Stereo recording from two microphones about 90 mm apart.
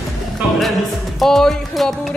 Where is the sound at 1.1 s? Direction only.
5° left (ahead or behind).